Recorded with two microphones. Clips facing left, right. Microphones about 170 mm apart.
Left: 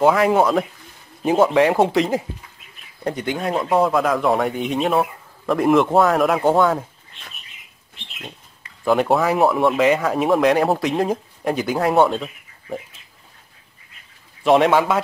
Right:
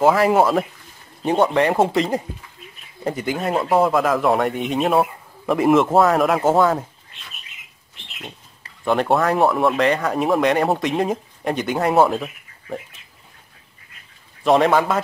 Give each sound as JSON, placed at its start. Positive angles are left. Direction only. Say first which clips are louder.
{"t": 0.0, "sound": "speech", "louder": "even", "side_deg": 0}
{"t": 8.8, "sound": "speech", "louder": "left 1 dB", "side_deg": 0}
{"t": 14.4, "sound": "speech", "louder": "left 1 dB", "side_deg": 0}